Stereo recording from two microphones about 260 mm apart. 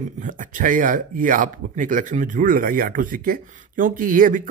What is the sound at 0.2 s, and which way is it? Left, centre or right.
A man's voice, right.